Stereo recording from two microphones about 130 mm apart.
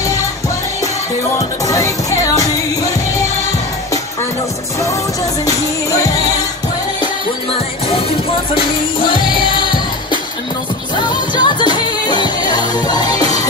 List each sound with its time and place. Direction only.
1.7 s music: 25° left (ahead or behind)
4.7 s music: 25° left (ahead or behind)
8.5 s music: 40° left (ahead or behind)